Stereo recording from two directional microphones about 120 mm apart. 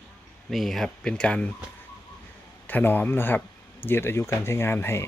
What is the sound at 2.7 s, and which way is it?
A man's voice, 15° left (ahead or behind).